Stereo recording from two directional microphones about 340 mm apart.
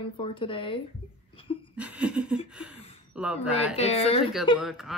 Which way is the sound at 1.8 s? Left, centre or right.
Centre.